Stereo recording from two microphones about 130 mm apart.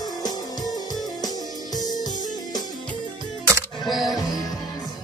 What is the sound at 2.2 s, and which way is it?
Music, 30° left (ahead or behind).